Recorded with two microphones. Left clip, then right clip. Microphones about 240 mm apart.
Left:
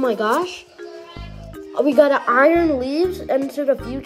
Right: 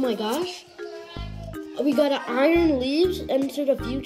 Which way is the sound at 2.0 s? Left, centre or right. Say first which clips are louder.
Left 7 dB; centre.